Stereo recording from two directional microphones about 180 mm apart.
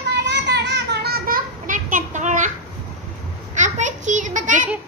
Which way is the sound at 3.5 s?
40° right (ahead or behind).